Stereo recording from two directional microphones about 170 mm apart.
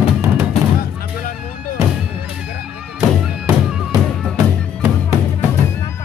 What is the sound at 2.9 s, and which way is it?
Music, 15° right (ahead or behind).